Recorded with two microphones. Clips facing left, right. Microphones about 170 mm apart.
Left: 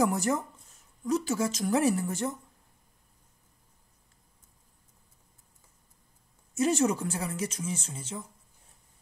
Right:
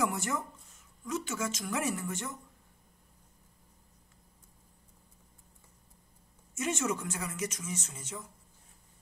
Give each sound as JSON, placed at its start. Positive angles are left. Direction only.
{"t": 0.0, "sound": "speech", "side_deg": 35}
{"t": 6.5, "sound": "speech", "side_deg": 35}